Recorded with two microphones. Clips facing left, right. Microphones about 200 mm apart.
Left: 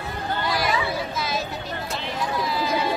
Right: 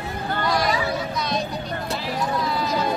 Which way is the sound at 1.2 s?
5° left (ahead or behind).